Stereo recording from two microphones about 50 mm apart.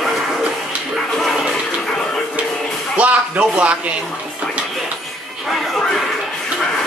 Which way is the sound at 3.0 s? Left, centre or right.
Right.